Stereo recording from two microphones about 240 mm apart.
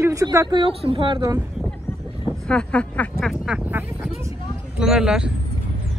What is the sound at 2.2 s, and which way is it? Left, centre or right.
Speech, centre.